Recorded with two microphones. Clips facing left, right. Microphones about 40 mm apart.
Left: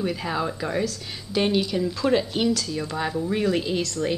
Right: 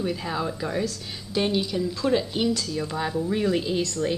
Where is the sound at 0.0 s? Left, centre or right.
Centre.